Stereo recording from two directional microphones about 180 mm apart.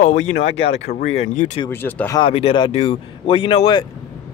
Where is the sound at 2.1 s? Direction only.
30° left (ahead or behind).